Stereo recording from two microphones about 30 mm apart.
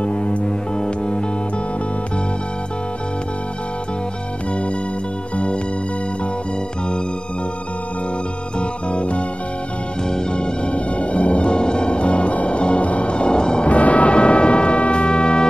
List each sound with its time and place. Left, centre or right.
0.0 s music: left
8.5 s music: left
10.0 s music: left
10.7 s music: left
11.4 s music: left
13.1 s music: left
13.7 s music: left